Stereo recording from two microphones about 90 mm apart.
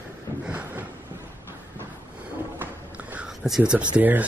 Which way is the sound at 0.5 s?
15° right (ahead or behind).